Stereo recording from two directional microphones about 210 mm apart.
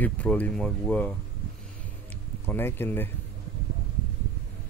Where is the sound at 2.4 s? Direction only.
10° left (ahead or behind).